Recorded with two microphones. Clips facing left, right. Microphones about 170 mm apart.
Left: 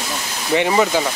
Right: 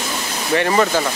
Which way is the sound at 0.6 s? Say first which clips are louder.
Even; 10° left (ahead or behind).